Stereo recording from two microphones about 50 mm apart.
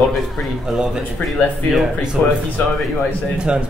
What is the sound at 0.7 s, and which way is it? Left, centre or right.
Speech, centre.